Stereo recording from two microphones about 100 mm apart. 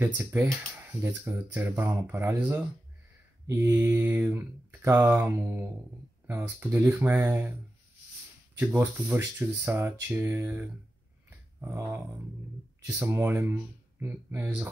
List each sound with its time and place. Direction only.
0.0 s speech: 25° right (ahead or behind)
8.5 s speech: 20° right (ahead or behind)
12.8 s speech: 20° right (ahead or behind)